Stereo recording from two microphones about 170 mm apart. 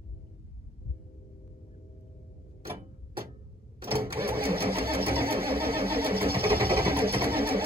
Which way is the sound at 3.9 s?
65° right (ahead or behind).